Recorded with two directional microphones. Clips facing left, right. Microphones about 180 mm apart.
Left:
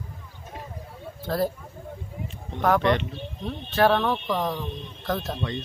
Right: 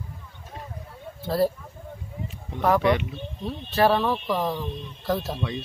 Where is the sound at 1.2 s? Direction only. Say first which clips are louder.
Right 3 dB; 5° right (ahead or behind).